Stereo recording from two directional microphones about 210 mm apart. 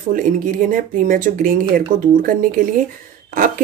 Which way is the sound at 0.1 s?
40° right (ahead or behind).